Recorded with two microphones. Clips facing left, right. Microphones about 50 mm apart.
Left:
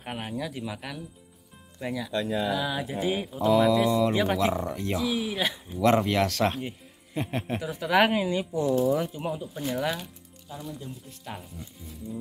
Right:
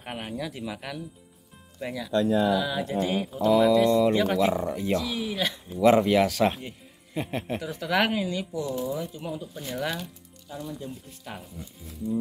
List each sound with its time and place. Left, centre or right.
0.0 s speech: centre
5.8 s speech: centre
8.1 s speech: left
8.6 s speech: left
9.3 s speech: centre
11.3 s speech: centre